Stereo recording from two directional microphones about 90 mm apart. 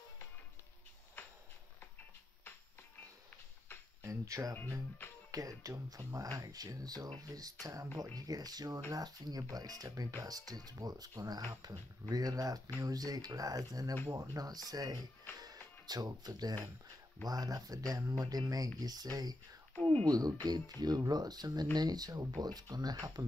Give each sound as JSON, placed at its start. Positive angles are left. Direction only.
{"t": 4.0, "sound": "music", "side_deg": -35}
{"t": 5.3, "sound": "speech", "side_deg": -40}
{"t": 15.3, "sound": "music", "side_deg": -45}
{"t": 17.2, "sound": "speech", "side_deg": -45}
{"t": 19.8, "sound": "speech", "side_deg": 15}
{"t": 20.1, "sound": "speech", "side_deg": -45}